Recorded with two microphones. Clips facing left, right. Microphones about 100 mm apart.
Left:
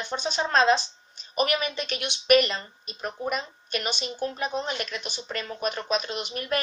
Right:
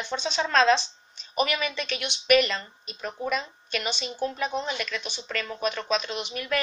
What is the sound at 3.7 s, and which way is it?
Speech, 45° left (ahead or behind).